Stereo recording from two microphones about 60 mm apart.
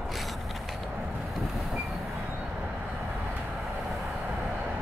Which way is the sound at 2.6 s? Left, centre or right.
Right.